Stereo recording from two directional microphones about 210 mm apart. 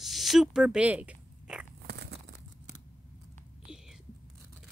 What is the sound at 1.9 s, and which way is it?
Crumpling, 50° right (ahead or behind).